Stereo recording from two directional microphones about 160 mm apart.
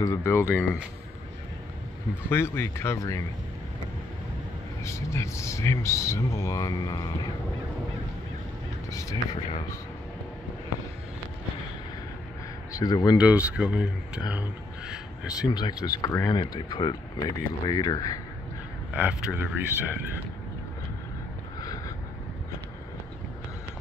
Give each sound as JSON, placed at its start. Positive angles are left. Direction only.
{"t": 0.0, "sound": "speech", "side_deg": 15}
{"t": 2.2, "sound": "speech", "side_deg": 15}
{"t": 4.8, "sound": "speech", "side_deg": 20}
{"t": 12.7, "sound": "speech", "side_deg": 25}
{"t": 13.2, "sound": "speech", "side_deg": -10}
{"t": 15.5, "sound": "speech", "side_deg": 25}
{"t": 16.3, "sound": "speech", "side_deg": 30}
{"t": 18.9, "sound": "speech", "side_deg": -10}
{"t": 21.5, "sound": "a sound", "side_deg": 20}